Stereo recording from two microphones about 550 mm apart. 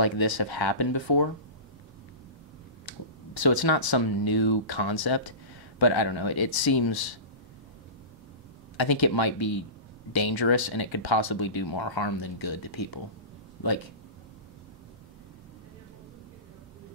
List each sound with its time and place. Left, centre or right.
0.0 s speech: left
2.8 s finger snapping: left
3.5 s speech: left
5.8 s speech: left
8.7 s speech: left
9.0 s speech: left
10.1 s speech: left
11.4 s speech: left
12.6 s speech: left